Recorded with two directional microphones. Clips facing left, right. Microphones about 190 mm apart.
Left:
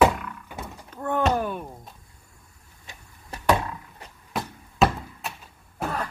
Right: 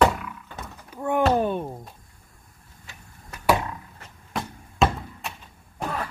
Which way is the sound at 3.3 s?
30° left (ahead or behind).